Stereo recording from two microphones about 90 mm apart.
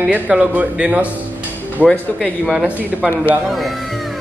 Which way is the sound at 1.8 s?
5° left (ahead or behind).